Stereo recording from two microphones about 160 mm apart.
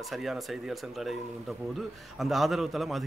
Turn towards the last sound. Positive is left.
turn(degrees=0)  # may be behind; listen again after turning